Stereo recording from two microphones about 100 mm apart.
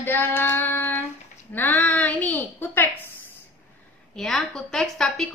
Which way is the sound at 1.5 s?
15° left (ahead or behind).